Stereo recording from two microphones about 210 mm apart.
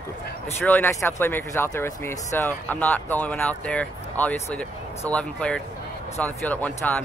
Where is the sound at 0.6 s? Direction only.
10° left (ahead or behind).